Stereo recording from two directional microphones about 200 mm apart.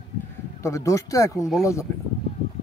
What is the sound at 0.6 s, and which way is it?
Speech, 15° left (ahead or behind).